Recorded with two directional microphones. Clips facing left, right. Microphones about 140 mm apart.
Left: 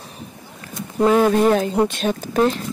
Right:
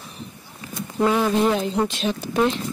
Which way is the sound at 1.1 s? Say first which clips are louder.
Left 5 dB; 50° left (ahead or behind).